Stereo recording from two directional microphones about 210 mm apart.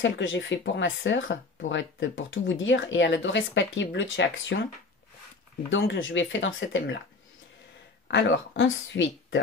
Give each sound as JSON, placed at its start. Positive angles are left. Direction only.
{"t": 0.0, "sound": "speech", "side_deg": 60}
{"t": 5.7, "sound": "speech", "side_deg": 65}
{"t": 8.1, "sound": "speech", "side_deg": 60}